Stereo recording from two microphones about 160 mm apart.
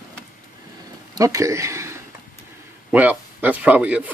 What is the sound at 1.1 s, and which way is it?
A man's voice, 20° right (ahead or behind).